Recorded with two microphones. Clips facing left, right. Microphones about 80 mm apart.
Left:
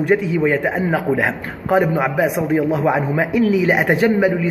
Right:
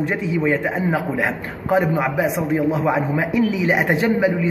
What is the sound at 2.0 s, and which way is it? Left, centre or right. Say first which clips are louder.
A man's voice: left 2 dB; centre.